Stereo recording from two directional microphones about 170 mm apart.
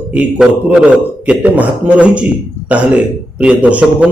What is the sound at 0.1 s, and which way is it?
A man's voice, 10° right (ahead or behind).